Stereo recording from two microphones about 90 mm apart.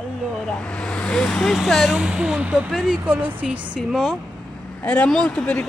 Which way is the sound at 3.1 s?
20° right (ahead or behind).